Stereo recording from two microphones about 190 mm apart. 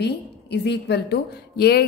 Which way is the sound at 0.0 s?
60° left (ahead or behind).